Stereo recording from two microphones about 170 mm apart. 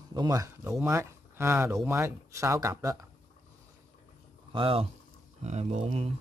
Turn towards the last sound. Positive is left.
turn(degrees=-40)  # may be behind; listen again after turning